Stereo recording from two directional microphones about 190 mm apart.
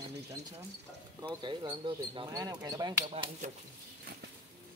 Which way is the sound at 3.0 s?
35° right (ahead or behind).